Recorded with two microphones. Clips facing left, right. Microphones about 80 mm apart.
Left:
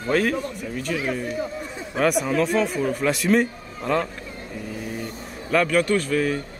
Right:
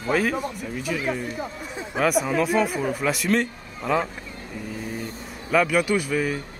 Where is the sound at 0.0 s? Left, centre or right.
Centre.